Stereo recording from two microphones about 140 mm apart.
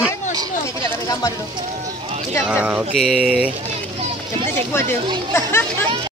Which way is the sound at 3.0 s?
5° right (ahead or behind).